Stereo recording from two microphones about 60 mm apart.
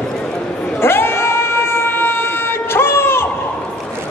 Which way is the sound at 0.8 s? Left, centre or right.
Left.